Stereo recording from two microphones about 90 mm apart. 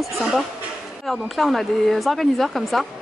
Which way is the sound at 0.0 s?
Centre (ahead or behind).